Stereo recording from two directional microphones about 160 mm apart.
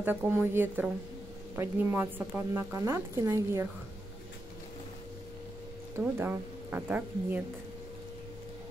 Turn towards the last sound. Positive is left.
turn(degrees=-10)  # may be behind; listen again after turning